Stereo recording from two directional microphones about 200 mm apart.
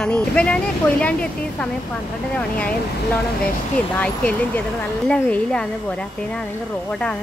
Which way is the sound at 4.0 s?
10° left (ahead or behind).